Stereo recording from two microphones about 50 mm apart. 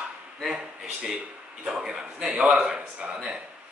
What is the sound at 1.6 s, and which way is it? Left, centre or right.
A man's voice, centre.